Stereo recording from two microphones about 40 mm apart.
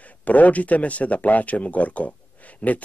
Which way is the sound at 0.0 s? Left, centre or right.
Left.